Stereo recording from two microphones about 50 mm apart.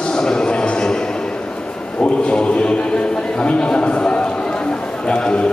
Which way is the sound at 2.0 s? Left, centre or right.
Centre.